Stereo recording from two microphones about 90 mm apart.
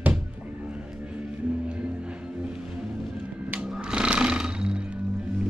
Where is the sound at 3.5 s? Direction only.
10° right (ahead or behind).